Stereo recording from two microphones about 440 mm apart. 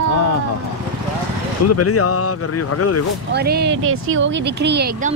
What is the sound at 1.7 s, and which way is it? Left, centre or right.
Speech, left.